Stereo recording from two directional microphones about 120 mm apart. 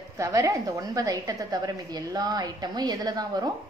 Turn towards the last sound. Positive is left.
turn(degrees=-35)  # may be behind; listen again after turning